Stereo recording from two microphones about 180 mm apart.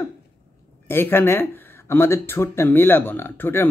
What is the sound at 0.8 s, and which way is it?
Speech, 10° left (ahead or behind).